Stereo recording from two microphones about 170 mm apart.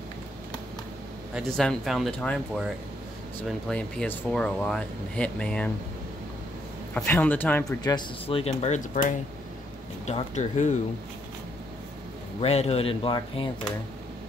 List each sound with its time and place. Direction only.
1.3 s speech: centre (ahead or behind)
6.9 s speech: 10° left (ahead or behind)
7.8 s speech: 30° left (ahead or behind)
8.6 s speech: 45° left (ahead or behind)
10.0 s speech: 40° left (ahead or behind)
12.4 s speech: 35° left (ahead or behind)